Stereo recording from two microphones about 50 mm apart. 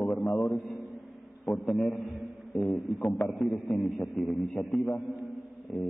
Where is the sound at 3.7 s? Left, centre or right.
Centre.